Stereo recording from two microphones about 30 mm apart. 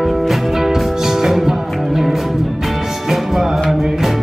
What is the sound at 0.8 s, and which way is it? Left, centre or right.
Music, centre.